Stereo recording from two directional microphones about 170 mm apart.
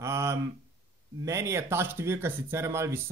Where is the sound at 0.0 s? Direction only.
15° right (ahead or behind).